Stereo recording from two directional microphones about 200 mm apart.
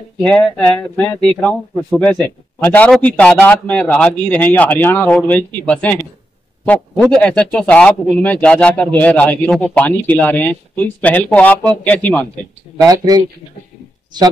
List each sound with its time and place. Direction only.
0.2 s speech: 5° left (ahead or behind)
7.2 s speech: 5° left (ahead or behind)
12.7 s speech: 20° right (ahead or behind)